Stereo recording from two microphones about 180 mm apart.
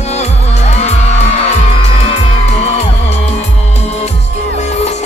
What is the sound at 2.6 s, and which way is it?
Music, 40° left (ahead or behind).